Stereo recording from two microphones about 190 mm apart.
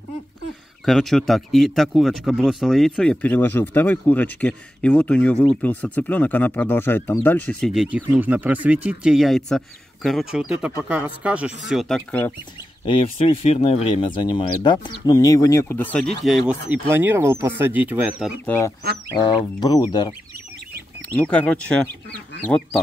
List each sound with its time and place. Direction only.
0.8 s speech: centre (ahead or behind)
12.8 s speech: 30° left (ahead or behind); by 18.3 s 5° right (ahead or behind)
18.4 s speech: 10° left (ahead or behind)
19.2 s speech: 25° left (ahead or behind)
21.1 s speech: 10° left (ahead or behind)